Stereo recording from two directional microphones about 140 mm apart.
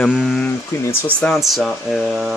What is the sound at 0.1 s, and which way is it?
Speech, 5° right (ahead or behind).